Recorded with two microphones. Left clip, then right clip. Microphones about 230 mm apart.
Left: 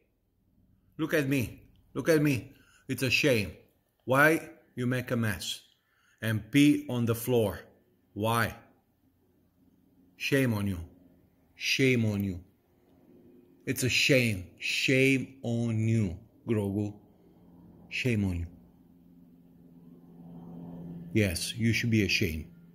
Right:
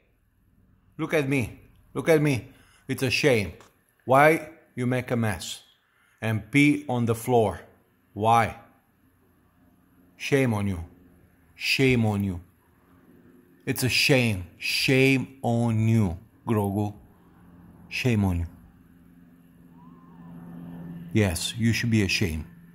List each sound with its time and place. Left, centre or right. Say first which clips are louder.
0.9 s a man's voice: right 4 dB; centre
10.1 s a man's voice: right 4 dB; centre
13.7 s speech: right 3 dB; right
21.1 s speech: right 4 dB; centre